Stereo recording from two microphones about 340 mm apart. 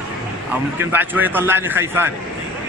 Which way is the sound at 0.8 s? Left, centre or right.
Centre.